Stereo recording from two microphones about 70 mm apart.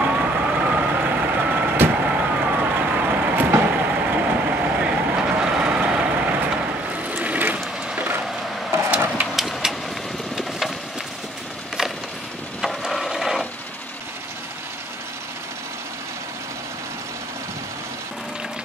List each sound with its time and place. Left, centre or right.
0.0 s vehicle: centre
7.1 s boat: right
9.3 s vehicle: centre
12.6 s wood: centre